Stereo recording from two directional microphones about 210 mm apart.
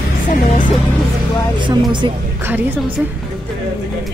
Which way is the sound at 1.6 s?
20° right (ahead or behind).